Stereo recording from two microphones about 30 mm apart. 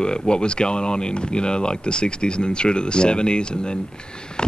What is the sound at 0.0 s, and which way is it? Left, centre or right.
Speech, left.